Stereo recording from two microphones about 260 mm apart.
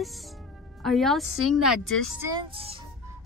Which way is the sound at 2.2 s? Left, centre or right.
Centre.